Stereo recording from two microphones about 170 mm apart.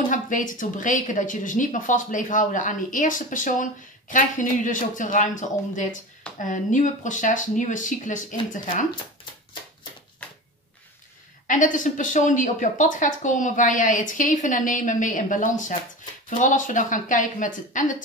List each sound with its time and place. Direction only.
0.1 s speech: 50° left (ahead or behind)
10.2 s a sound: 10° left (ahead or behind)
11.4 s speech: 50° left (ahead or behind)